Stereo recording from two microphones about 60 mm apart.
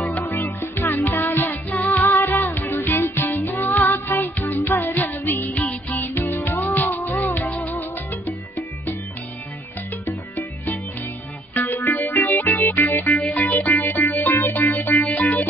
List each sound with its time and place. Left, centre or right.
0.2 s music: left
10.0 s music: left